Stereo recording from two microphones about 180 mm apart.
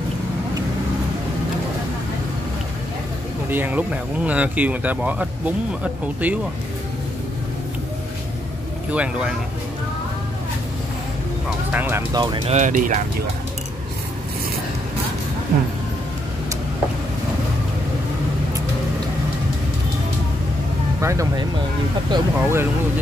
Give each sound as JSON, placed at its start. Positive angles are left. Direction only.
{"t": 3.4, "sound": "speech", "side_deg": -10}
{"t": 8.9, "sound": "speech", "side_deg": -5}
{"t": 11.7, "sound": "speech", "side_deg": -10}
{"t": 12.1, "sound": "speech", "side_deg": -20}
{"t": 12.4, "sound": "speech", "side_deg": -40}
{"t": 21.0, "sound": "speech", "side_deg": -15}